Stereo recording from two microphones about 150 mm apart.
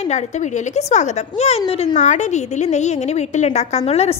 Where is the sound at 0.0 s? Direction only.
50° left (ahead or behind).